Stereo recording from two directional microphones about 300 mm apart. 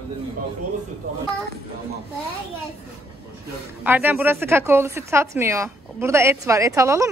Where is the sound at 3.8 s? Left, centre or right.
Centre.